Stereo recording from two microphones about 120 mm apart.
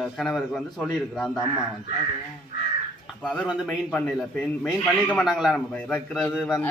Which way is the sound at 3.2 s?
5° right (ahead or behind).